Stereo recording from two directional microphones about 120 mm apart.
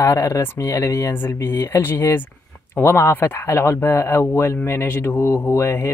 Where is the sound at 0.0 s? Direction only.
25° left (ahead or behind).